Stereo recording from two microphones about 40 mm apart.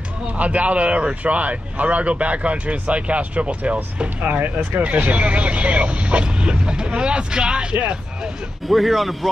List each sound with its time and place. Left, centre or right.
0.3 s speech: right
8.6 s speech: centre